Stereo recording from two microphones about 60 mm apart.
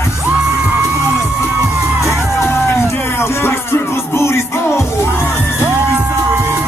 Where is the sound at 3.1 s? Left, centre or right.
Left.